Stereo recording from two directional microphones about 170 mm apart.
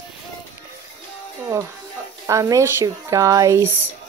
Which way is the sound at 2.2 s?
20° right (ahead or behind).